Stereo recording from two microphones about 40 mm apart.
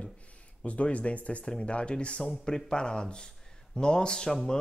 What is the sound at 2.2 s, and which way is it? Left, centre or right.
Speech, centre.